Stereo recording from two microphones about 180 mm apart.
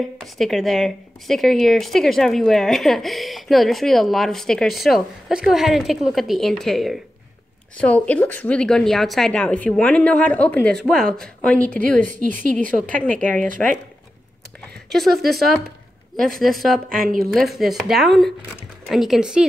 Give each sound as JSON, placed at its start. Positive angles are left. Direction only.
{"t": 0.2, "sound": "a woman's voice", "side_deg": 0}
{"t": 12.1, "sound": "speech", "side_deg": -50}
{"t": 12.9, "sound": "a woman's voice", "side_deg": 5}
{"t": 14.9, "sound": "speech", "side_deg": 0}
{"t": 16.9, "sound": "speech", "side_deg": -50}
{"t": 17.3, "sound": "speech", "side_deg": 0}